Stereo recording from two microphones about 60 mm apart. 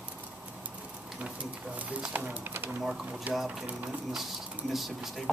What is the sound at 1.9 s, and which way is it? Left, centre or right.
Speech, right.